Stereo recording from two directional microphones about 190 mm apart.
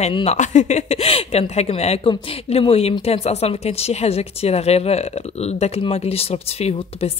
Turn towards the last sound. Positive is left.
turn(degrees=30)  # may be behind; listen again after turning